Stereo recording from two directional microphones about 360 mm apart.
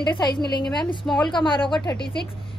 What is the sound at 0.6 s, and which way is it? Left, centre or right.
Speech, centre.